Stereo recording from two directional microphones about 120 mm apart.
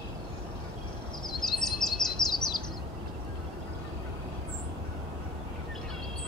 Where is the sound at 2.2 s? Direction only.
35° left (ahead or behind).